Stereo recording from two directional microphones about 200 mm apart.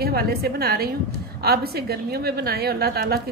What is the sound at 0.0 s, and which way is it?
A woman's voice, 50° right (ahead or behind).